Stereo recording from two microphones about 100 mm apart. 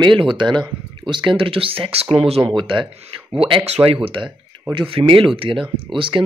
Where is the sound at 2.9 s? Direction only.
80° right.